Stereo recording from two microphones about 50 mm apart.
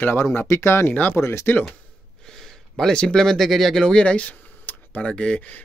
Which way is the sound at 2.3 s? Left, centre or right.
Centre.